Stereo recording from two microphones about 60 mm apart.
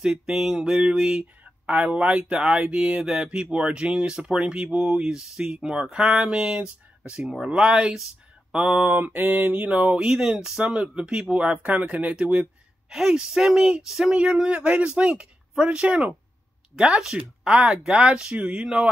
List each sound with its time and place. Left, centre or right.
0.0 s speech: centre
8.8 s speech: right; by 10.3 s centre
10.6 s speech: right
12.9 s speech: centre
16.7 s speech: centre